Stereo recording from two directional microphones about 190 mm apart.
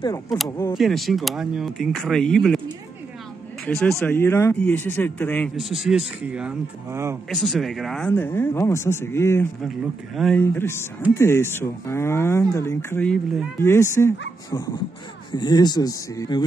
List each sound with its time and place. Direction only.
0.0 s speech: 20° left (ahead or behind)
0.7 s speech: centre (ahead or behind)
3.6 s a man's voice: 5° left (ahead or behind)
5.6 s speech: centre (ahead or behind)
7.2 s speech: centre (ahead or behind)
8.1 s a man's voice: 10° left (ahead or behind)
10.1 s speech: centre (ahead or behind)
10.4 s a man's voice: 10° left (ahead or behind)
15.3 s speech: 20° left (ahead or behind)